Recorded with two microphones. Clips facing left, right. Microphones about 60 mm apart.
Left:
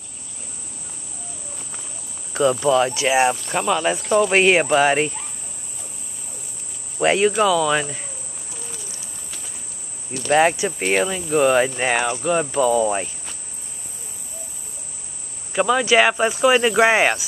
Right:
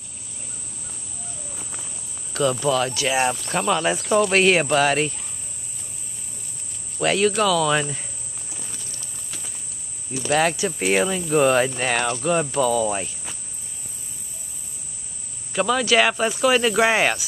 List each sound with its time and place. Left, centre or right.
1.6 s cricket: centre
2.3 s cricket: left
2.7 s speech: left
3.3 s cricket: centre
4.3 s speech: centre
7.0 s speech: left; by 8.0 s centre
10.1 s speech: left
10.8 s speech: centre
15.5 s speech: centre